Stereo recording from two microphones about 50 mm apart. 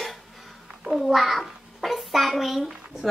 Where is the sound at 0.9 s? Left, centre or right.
Centre.